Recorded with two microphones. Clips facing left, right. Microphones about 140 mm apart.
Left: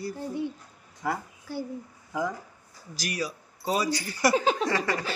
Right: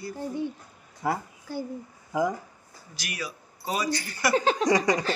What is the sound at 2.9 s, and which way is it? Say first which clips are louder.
Speech: left 4 dB; 35° left (ahead or behind).